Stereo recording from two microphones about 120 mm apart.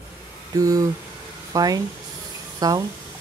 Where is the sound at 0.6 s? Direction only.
30° right (ahead or behind).